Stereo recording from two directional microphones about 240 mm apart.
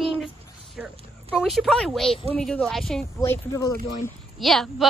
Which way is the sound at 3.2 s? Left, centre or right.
Centre.